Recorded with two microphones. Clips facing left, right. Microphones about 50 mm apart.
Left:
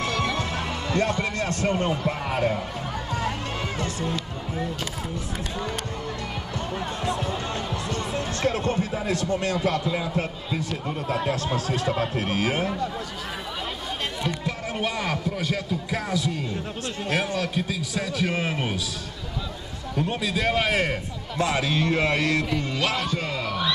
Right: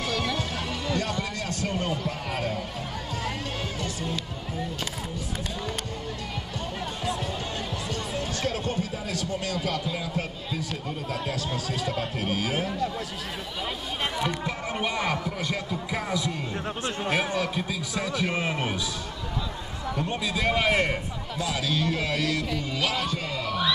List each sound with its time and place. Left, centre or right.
0.0 s music: left
7.9 s speech: left
11.1 s speech: left
11.4 s speech: left
14.2 s speech: centre
16.5 s speech: right
17.6 s speech: centre
20.0 s speech: centre
21.4 s speech: left
22.8 s speech: centre